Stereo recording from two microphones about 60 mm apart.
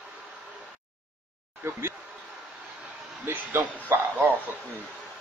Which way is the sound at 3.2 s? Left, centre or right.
Right.